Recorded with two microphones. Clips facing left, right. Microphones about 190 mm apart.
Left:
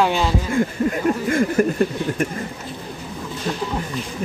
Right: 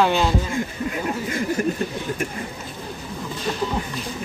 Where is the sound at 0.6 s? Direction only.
50° left (ahead or behind).